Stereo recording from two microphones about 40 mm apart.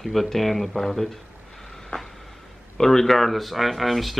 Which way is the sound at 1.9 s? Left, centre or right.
Left.